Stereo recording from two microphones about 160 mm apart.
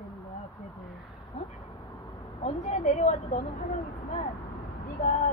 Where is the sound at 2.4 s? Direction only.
45° left (ahead or behind).